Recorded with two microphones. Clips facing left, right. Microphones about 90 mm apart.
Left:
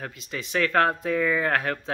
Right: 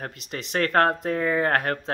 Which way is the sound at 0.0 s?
45° right (ahead or behind).